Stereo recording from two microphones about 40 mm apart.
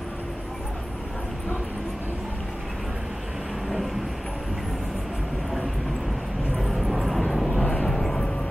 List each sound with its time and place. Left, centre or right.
6.6 s vehicle: centre
7.6 s vehicle: left
7.9 s vehicle: centre